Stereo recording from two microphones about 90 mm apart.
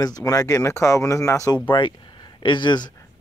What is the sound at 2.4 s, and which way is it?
Speech, 60° left (ahead or behind).